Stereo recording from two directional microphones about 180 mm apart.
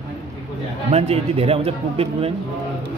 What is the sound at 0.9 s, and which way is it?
Speech, 35° right (ahead or behind).